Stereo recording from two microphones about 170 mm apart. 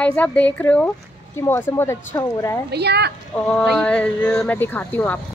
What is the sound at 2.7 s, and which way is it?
Speech, 75° right (ahead or behind).